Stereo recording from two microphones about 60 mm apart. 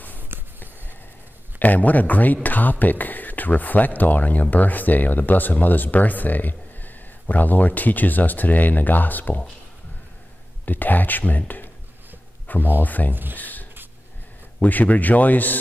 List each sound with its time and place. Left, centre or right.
0.3 s a sound: right
1.6 s speech: left
10.6 s speech: left
13.1 s speech: right
13.4 s a sound: left
14.6 s speech: left